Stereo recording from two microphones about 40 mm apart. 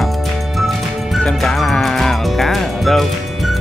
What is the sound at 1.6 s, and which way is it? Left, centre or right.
Speech, centre.